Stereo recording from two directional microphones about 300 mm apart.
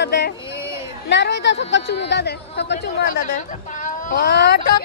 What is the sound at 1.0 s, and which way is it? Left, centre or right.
A woman's voice, left.